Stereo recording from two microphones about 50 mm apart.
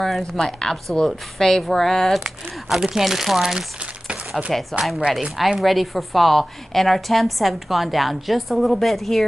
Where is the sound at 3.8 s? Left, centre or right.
Right.